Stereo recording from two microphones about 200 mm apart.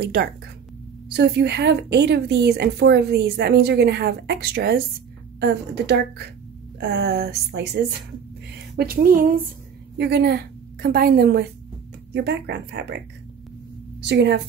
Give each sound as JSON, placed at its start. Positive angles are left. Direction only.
{"t": 0.0, "sound": "a woman's voice", "side_deg": -55}
{"t": 8.7, "sound": "speech", "side_deg": -45}
{"t": 9.9, "sound": "a woman's voice", "side_deg": -55}
{"t": 14.0, "sound": "a woman's voice", "side_deg": -60}